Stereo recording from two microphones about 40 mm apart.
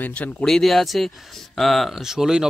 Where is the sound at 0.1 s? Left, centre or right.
Left.